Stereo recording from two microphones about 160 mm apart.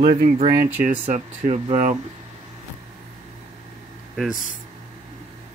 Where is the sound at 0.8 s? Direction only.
50° right (ahead or behind).